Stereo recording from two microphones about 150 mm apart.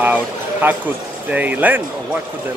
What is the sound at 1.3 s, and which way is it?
Speech, 10° right (ahead or behind).